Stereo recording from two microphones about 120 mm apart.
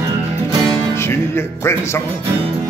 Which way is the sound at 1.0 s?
20° left (ahead or behind).